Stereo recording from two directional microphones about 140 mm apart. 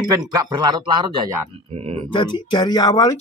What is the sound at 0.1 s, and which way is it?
Speech, 25° right (ahead or behind).